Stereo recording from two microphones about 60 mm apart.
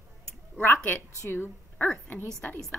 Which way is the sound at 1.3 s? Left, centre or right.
Left.